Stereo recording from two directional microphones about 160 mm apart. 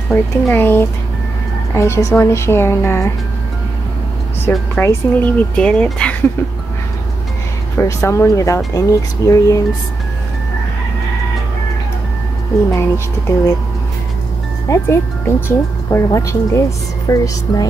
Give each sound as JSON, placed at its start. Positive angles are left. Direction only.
{"t": 0.1, "sound": "speech", "side_deg": 15}
{"t": 4.5, "sound": "speech", "side_deg": 10}
{"t": 7.7, "sound": "speech", "side_deg": 15}
{"t": 12.7, "sound": "speech", "side_deg": 20}
{"t": 14.7, "sound": "speech", "side_deg": 20}